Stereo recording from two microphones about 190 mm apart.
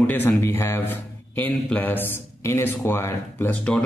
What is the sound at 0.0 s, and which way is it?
A man's voice, 10° left (ahead or behind).